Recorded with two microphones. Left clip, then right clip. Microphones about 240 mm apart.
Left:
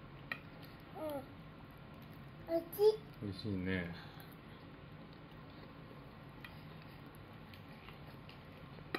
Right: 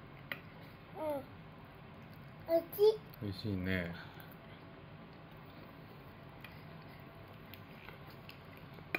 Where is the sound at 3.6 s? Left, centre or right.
Right.